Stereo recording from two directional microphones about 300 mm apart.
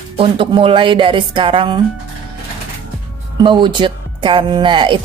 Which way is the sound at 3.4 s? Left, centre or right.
Centre.